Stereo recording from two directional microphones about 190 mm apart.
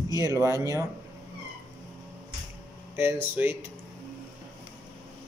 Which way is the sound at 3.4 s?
10° right (ahead or behind).